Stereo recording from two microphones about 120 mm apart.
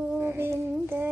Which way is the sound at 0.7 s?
15° right (ahead or behind).